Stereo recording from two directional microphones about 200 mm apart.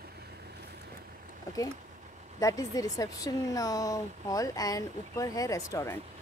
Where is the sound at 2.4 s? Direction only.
15° left (ahead or behind).